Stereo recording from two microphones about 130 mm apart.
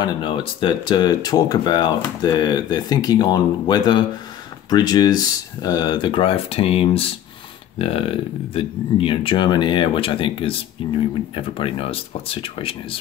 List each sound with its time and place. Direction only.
0.0 s speech: 40° left (ahead or behind)